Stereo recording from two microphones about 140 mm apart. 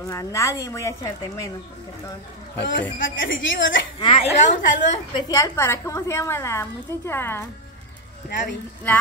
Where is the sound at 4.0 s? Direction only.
35° left (ahead or behind).